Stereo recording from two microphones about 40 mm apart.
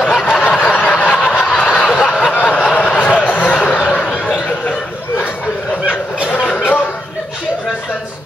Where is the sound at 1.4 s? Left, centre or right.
Left.